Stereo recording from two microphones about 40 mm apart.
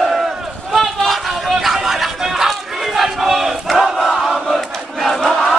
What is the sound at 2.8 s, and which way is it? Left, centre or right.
Battle cry, centre.